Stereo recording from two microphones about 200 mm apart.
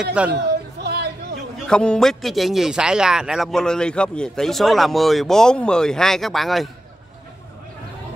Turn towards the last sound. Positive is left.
turn(degrees=0)  # may be behind; listen again after turning